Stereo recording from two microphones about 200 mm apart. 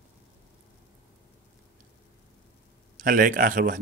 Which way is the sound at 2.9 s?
45° right (ahead or behind).